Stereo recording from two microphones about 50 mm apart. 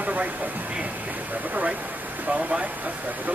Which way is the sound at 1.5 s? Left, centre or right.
Right.